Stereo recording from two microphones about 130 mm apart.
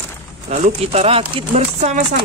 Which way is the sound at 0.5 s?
55° right (ahead or behind).